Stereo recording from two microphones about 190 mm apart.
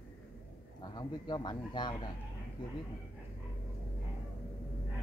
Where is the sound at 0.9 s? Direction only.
25° left (ahead or behind).